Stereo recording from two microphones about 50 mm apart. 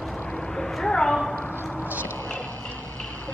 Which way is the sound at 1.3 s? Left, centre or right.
Left.